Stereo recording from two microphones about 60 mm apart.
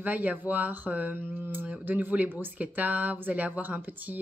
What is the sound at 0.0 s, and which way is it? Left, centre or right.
A woman's voice, right.